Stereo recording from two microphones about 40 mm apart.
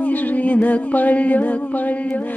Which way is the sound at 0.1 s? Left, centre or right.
Left.